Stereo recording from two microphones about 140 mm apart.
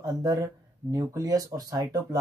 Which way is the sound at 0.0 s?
30° right (ahead or behind).